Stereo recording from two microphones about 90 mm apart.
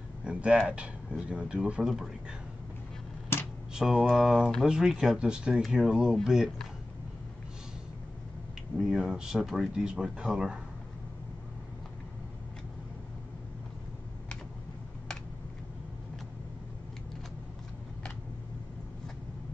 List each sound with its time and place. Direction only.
0.2 s speech: 10° right (ahead or behind)
3.3 s a sound: 25° left (ahead or behind)
3.7 s speech: 5° right (ahead or behind)
8.7 s speech: 5° right (ahead or behind)